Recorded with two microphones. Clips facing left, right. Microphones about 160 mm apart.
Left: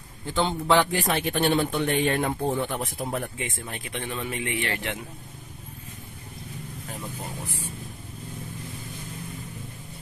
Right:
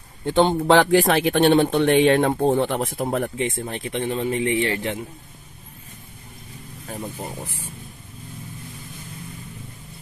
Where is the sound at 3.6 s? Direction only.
30° right (ahead or behind).